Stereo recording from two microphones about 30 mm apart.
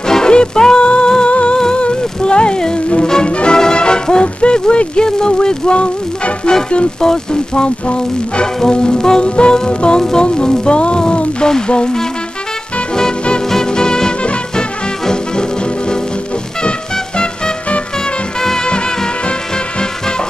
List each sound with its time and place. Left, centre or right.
0.3 s music: left
1.8 s a sound: left
3.3 s music: left
3.5 s music: left
4.4 s speech: left
5.8 s music: left
7.0 s speech: left
7.6 s music: left
8.6 s speech: left
9.2 s music: left
13.5 s music: left